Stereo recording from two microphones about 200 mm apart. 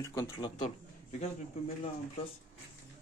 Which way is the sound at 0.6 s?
35° left (ahead or behind).